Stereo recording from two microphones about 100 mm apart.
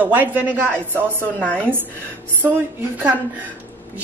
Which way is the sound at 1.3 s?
15° left (ahead or behind).